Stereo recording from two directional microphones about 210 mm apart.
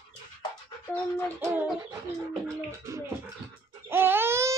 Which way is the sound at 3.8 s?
10° right (ahead or behind).